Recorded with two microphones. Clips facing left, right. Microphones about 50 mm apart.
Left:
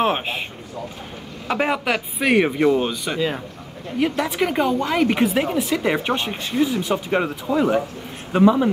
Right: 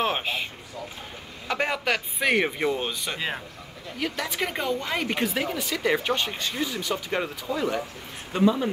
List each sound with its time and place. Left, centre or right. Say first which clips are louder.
0.0 s speech: left 5 dB; left
1.5 s speech: left 5 dB; centre
4.0 s speech: left 8 dB; left
4.9 s speech: left 8 dB; centre